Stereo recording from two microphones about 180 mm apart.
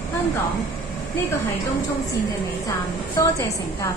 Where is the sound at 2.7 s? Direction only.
20° left (ahead or behind).